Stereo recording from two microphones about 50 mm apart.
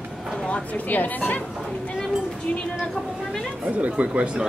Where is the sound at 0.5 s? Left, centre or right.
Left.